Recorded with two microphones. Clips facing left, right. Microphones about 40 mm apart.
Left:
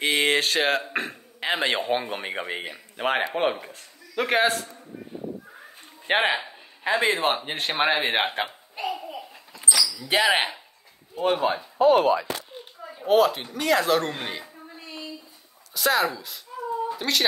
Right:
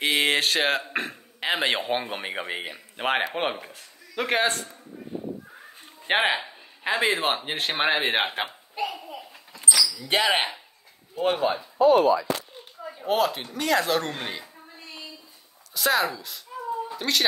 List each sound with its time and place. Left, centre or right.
0.0 s speech: centre
4.2 s speech: centre
6.0 s speech: centre
8.7 s hands: centre
9.8 s speech: centre
11.8 s speech: left
12.8 s speech: centre
15.7 s speech: centre